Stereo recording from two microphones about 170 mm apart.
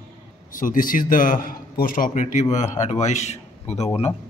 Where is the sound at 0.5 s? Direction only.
55° left (ahead or behind); by 4.1 s 35° left (ahead or behind).